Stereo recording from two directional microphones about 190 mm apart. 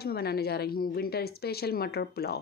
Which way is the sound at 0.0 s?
55° left (ahead or behind).